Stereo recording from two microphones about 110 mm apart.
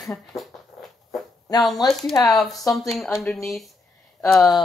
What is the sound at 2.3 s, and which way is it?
Speech, centre (ahead or behind).